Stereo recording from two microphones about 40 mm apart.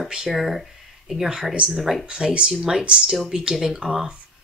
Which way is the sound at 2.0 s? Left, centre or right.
Right.